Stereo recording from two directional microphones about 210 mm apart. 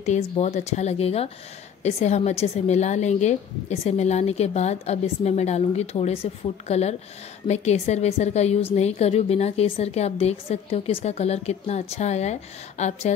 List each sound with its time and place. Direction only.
0.0 s a woman's voice: 30° left (ahead or behind)